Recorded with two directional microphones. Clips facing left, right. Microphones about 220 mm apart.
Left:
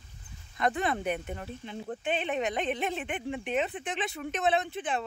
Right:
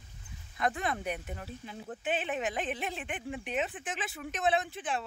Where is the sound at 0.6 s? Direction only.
Centre (ahead or behind).